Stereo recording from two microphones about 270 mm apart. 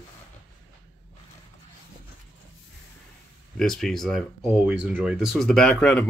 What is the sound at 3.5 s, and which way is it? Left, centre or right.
Speech, centre.